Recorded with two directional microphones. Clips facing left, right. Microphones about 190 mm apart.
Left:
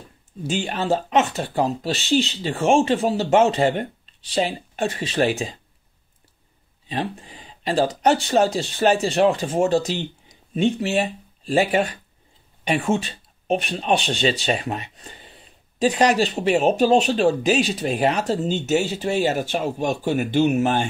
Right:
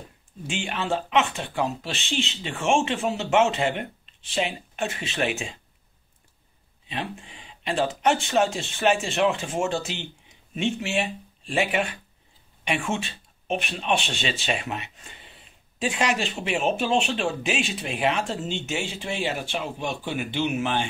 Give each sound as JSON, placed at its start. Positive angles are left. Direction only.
{"t": 0.4, "sound": "speech", "side_deg": 40}
{"t": 6.9, "sound": "speech", "side_deg": 35}